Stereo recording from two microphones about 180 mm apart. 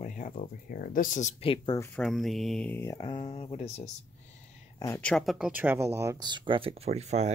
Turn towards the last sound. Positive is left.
turn(degrees=-40)  # may be behind; listen again after turning